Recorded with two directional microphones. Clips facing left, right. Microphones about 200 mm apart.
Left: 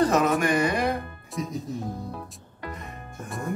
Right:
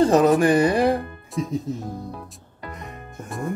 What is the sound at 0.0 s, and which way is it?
Speech, 35° right (ahead or behind).